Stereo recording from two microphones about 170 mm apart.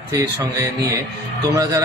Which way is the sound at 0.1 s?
20° right (ahead or behind).